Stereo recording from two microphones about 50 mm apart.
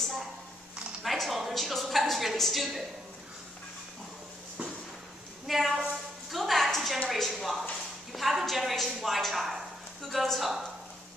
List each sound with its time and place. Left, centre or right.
1.0 s a woman's voice: centre
5.5 s a woman's voice: centre